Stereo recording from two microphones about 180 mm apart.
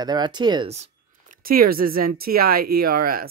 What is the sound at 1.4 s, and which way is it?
Speech, 55° right (ahead or behind).